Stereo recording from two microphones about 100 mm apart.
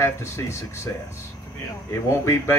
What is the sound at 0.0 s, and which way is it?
Speech, 25° left (ahead or behind).